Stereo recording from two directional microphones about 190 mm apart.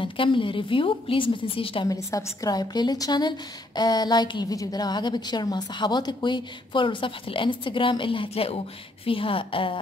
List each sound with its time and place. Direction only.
0.0 s speech: 25° left (ahead or behind)